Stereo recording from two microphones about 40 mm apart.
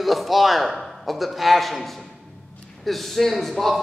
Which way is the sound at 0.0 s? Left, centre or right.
Centre.